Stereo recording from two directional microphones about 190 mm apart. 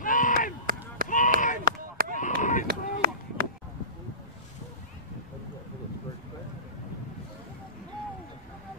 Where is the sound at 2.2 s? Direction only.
40° left (ahead or behind).